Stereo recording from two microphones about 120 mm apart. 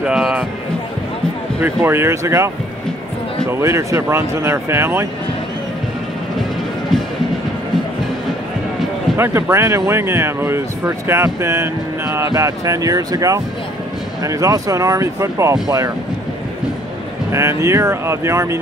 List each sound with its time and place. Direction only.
0.0 s speech: 5° right (ahead or behind)
1.6 s speech: 20° right (ahead or behind)
9.1 s speech: 20° right (ahead or behind)
17.3 s speech: 25° right (ahead or behind)